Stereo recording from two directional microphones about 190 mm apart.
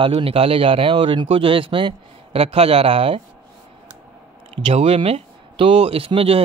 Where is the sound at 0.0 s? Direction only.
30° right (ahead or behind).